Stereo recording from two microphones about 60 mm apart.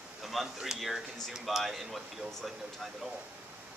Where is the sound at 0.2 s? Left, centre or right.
Centre.